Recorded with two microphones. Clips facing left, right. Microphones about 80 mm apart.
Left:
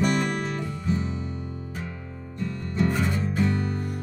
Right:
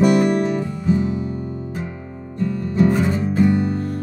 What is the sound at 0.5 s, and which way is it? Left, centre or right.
Music, centre.